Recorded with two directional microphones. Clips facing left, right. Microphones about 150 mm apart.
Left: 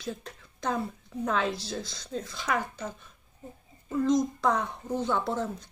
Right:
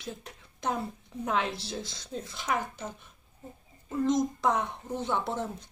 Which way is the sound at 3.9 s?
25° right (ahead or behind).